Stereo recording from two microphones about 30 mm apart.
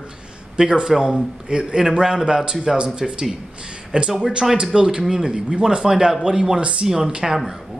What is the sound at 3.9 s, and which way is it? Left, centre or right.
Speech, right.